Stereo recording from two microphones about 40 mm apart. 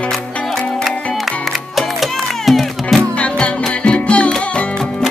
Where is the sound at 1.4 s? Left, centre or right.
Centre.